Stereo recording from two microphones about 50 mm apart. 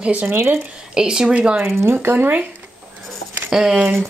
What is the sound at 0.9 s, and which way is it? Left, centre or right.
Speech, centre.